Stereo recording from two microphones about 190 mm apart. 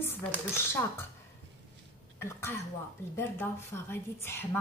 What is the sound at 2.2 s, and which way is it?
A woman's voice, 15° left (ahead or behind).